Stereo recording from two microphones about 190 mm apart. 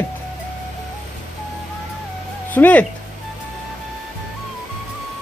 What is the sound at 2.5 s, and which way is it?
Speech, 10° left (ahead or behind).